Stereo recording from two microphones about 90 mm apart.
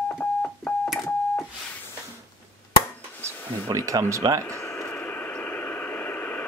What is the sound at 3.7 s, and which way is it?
Speech, 35° right (ahead or behind).